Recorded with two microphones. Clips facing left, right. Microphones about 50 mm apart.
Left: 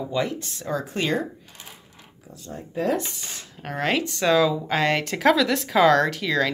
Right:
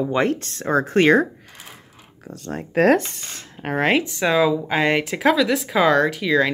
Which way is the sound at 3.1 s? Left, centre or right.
Right.